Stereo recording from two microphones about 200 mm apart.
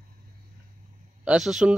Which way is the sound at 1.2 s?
Centre (ahead or behind).